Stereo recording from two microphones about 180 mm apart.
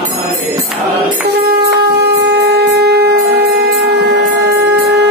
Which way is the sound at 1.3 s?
60° right (ahead or behind).